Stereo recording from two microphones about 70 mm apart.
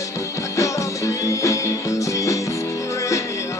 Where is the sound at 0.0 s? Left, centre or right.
Left.